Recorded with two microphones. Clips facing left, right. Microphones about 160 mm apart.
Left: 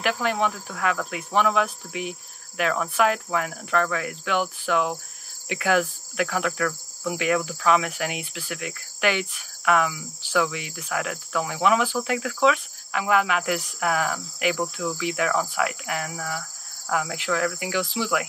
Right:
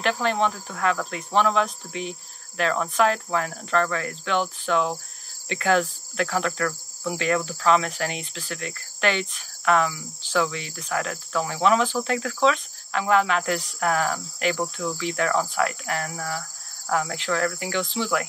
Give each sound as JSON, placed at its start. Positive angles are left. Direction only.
{"t": 0.0, "sound": "cricket", "side_deg": 10}